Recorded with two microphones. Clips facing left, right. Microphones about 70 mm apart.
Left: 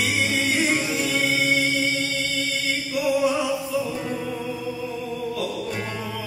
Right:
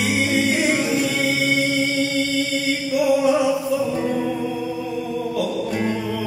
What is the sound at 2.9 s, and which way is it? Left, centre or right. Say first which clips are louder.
Music: right 5 dB; right.